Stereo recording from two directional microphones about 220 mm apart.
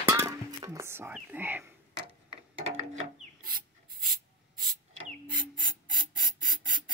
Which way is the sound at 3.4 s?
40° right (ahead or behind).